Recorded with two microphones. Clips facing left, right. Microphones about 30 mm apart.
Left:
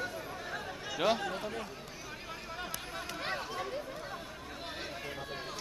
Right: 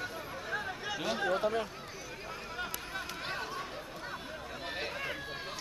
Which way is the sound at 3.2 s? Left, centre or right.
Centre.